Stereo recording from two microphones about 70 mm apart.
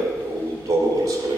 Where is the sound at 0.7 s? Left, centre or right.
Right.